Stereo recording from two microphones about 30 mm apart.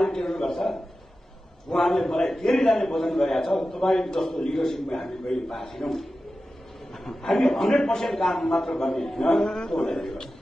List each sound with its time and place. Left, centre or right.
0.0 s a man's voice: centre
1.7 s a man's voice: centre